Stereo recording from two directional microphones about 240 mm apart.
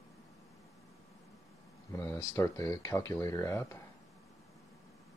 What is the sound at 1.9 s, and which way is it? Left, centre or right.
Speech, centre.